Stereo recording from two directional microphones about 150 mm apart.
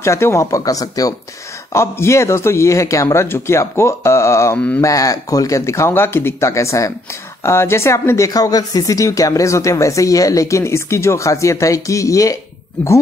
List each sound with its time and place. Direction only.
0.0 s speech: 20° left (ahead or behind)
4.8 s speech: 20° left (ahead or behind)